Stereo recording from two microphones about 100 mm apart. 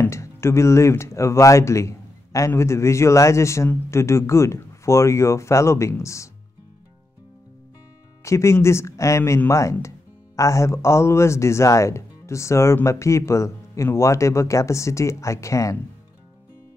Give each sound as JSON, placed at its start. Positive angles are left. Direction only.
{"t": 0.0, "sound": "speech", "side_deg": 25}
{"t": 8.2, "sound": "speech", "side_deg": 30}